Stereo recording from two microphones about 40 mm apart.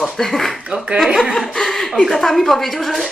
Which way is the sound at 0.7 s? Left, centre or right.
Right.